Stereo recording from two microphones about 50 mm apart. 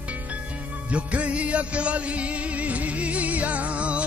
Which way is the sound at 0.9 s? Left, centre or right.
Right.